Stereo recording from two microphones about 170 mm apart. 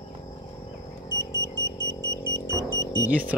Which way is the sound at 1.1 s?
20° left (ahead or behind).